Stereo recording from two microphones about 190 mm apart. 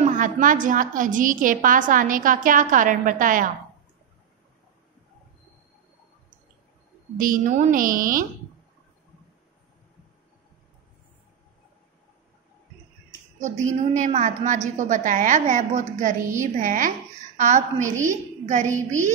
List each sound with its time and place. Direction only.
0.0 s a woman's voice: 45° right (ahead or behind)
7.2 s a woman's voice: 45° right (ahead or behind)
13.4 s a woman's voice: 40° right (ahead or behind)